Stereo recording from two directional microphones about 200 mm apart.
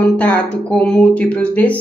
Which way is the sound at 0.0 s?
5° left (ahead or behind).